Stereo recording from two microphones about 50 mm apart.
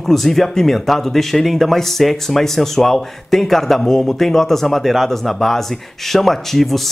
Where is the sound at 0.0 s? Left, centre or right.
Centre.